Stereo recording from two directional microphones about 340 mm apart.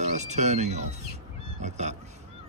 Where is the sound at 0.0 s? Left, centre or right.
Centre.